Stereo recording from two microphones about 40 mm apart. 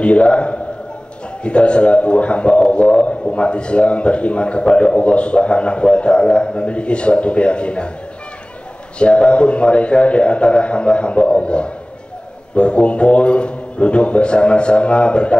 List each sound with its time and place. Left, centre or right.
0.0 s a man's voice: left
8.9 s a man's voice: left